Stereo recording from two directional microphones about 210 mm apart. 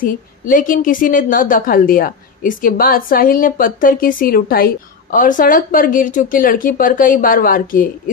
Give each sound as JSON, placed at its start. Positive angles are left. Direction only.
{"t": 0.0, "sound": "a woman's voice", "side_deg": 40}